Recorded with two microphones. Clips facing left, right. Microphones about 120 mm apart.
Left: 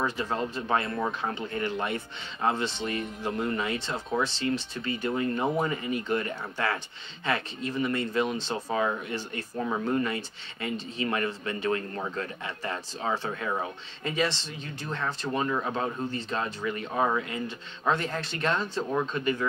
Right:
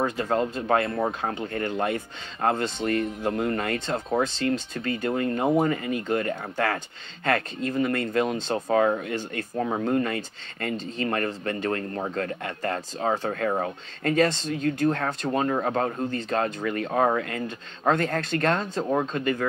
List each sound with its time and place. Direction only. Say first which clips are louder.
0.0 s speech: right 5 dB; 50° right (ahead or behind)
0.9 s speech: right 3 dB; 45° right (ahead or behind)